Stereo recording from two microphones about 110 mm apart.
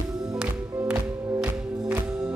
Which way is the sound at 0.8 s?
25° right (ahead or behind).